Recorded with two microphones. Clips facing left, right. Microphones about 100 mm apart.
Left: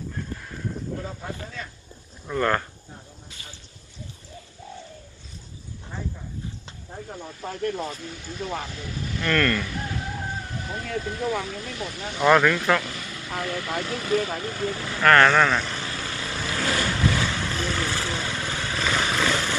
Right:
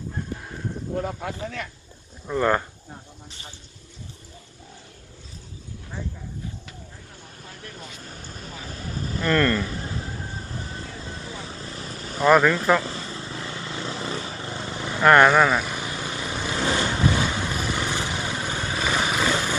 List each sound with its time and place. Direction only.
1.0 s speech: 65° right (ahead or behind)
2.2 s speech: 15° right (ahead or behind)
6.9 s speech: 55° left (ahead or behind)
8.0 s speech: 40° right (ahead or behind)
9.2 s a sound: 20° right (ahead or behind)
11.1 s speech: 75° left (ahead or behind)
11.4 s speech: 30° right (ahead or behind)
12.2 s speech: 5° right (ahead or behind)
12.8 s vehicle: 30° right (ahead or behind)
13.8 s speech: 25° right (ahead or behind)
14.4 s vehicle: 20° right (ahead or behind)